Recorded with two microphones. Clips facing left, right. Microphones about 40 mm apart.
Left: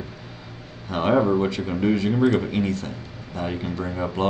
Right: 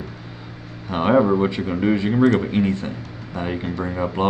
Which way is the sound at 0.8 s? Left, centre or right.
Centre.